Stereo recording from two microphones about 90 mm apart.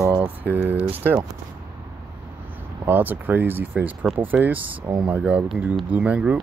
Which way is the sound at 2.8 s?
20° right (ahead or behind).